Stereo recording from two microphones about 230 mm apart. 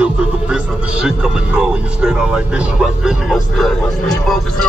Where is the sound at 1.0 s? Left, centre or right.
Centre.